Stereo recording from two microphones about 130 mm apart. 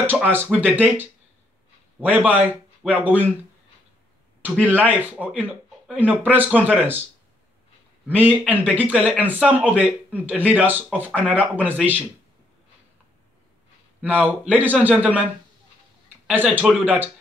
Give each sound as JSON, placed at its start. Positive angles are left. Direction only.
{"t": 0.0, "sound": "a man's voice", "side_deg": -15}
{"t": 4.6, "sound": "a man's voice", "side_deg": -15}
{"t": 8.1, "sound": "a man's voice", "side_deg": -15}
{"t": 14.0, "sound": "a man's voice", "side_deg": -10}
{"t": 16.3, "sound": "a man's voice", "side_deg": -10}